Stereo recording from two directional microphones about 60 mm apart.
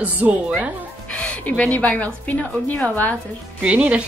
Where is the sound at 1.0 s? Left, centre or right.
Left.